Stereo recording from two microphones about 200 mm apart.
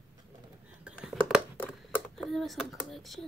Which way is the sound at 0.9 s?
5° right (ahead or behind).